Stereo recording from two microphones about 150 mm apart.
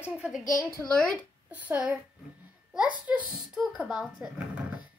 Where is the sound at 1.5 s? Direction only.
10° right (ahead or behind).